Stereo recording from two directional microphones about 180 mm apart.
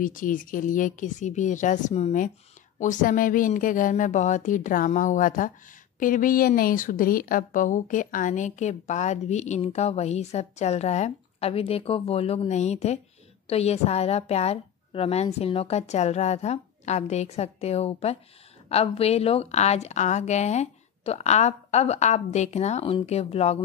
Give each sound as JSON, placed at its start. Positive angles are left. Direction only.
{"t": 0.0, "sound": "a woman's voice", "side_deg": 50}